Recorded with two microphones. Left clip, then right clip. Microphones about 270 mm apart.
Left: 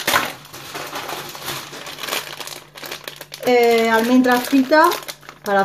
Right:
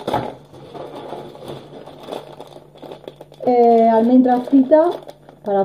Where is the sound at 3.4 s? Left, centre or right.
Centre.